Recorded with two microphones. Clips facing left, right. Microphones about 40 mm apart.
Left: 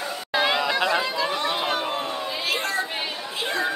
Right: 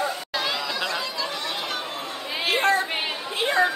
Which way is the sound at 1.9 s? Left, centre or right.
Left.